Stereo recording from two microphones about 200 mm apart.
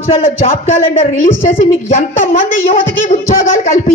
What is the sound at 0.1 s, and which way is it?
Speech, 30° left (ahead or behind).